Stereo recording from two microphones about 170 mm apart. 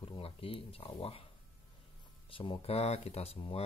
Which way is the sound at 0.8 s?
30° left (ahead or behind).